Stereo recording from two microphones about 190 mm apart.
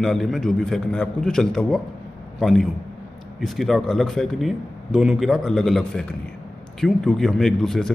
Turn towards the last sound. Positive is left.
turn(degrees=0)  # may be behind; listen again after turning